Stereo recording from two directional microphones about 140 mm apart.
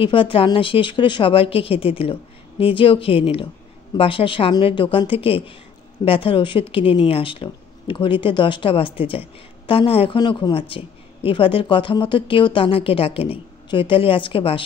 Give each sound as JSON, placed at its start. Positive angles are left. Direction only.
{"t": 0.0, "sound": "a woman's voice", "side_deg": 40}